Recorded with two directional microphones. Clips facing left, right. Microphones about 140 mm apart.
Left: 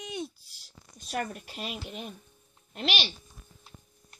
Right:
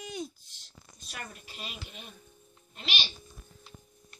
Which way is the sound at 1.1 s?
45° left (ahead or behind).